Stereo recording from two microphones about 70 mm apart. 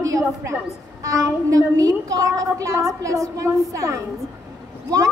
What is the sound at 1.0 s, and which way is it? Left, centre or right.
A woman's voice, right.